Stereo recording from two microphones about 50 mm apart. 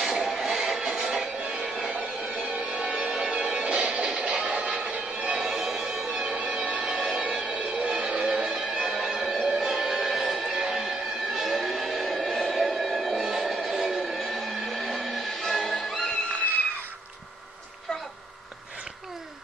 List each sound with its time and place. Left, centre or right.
0.0 s music: centre
1.8 s a sound: centre
2.2 s music: right
5.4 s music: centre
6.1 s music: right
8.5 s music: centre
10.1 s music: centre
13.2 s a sound: centre